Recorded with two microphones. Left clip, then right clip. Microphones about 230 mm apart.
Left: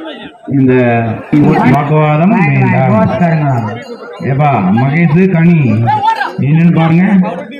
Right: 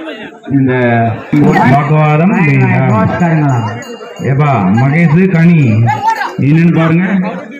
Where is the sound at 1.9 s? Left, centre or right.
Left.